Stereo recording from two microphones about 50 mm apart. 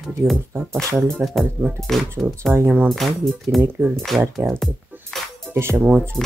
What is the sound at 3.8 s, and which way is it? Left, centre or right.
Speech, right.